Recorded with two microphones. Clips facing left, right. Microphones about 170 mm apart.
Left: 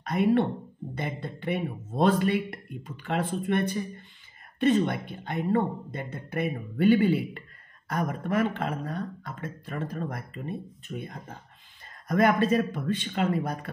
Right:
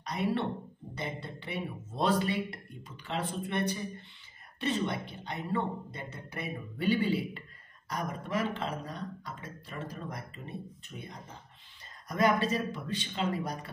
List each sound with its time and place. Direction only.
0.0 s speech: 55° left (ahead or behind)